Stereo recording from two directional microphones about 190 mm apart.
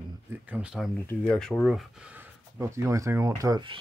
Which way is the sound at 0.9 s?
5° left (ahead or behind).